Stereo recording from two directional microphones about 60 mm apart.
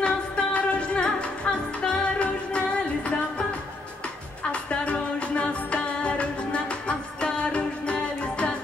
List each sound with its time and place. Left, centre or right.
0.0 s music: left
4.5 s music: centre